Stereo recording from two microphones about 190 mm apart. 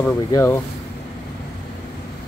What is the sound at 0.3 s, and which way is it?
Speech, 15° left (ahead or behind).